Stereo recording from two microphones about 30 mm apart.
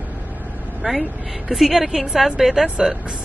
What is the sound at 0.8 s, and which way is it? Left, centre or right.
A woman's voice, right.